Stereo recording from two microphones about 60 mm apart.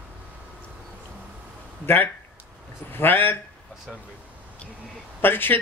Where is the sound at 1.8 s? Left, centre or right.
Left.